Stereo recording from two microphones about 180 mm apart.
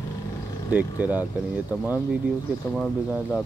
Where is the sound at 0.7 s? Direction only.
10° right (ahead or behind).